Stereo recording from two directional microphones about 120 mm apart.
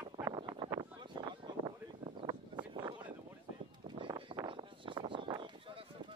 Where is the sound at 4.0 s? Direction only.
45° right (ahead or behind).